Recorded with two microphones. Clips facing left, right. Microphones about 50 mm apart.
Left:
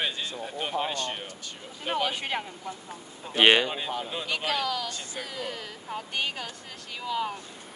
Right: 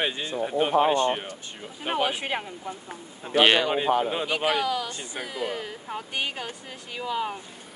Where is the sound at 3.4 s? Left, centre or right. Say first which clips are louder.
Right 1 dB; centre.